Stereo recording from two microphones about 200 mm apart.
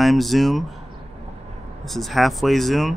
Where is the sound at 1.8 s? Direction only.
Centre (ahead or behind).